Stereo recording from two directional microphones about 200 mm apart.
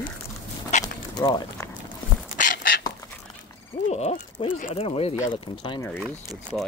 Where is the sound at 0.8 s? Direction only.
20° left (ahead or behind).